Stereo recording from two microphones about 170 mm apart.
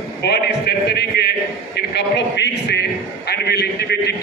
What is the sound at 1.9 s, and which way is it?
A man's voice, 85° left.